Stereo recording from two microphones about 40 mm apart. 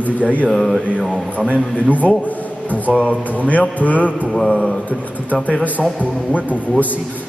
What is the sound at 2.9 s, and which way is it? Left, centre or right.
Speech, left.